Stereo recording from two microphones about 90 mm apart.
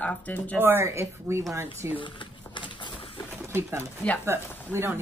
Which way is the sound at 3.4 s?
30° right (ahead or behind).